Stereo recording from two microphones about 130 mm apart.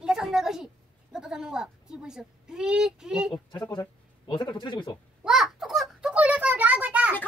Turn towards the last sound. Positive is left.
turn(degrees=-10)  # may be behind; listen again after turning